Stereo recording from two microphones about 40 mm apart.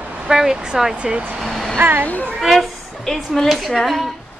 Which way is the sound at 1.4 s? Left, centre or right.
Centre.